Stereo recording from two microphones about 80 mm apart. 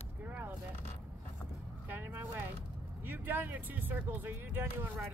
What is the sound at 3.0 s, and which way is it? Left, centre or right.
Speech, right.